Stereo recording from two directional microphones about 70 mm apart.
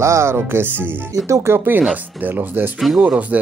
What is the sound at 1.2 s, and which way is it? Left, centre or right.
Music, right.